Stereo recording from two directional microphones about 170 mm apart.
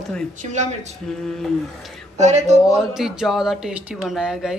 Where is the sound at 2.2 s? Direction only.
40° right (ahead or behind).